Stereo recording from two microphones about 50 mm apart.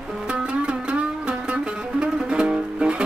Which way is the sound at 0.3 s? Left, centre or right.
Right.